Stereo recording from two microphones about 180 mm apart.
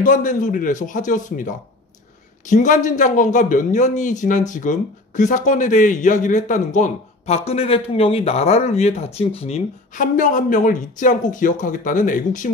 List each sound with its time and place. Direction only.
0.0 s a man's voice: 45° left (ahead or behind)
9.9 s a man's voice: 45° left (ahead or behind)